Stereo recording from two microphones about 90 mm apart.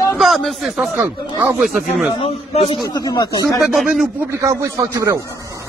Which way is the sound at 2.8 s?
45° left (ahead or behind).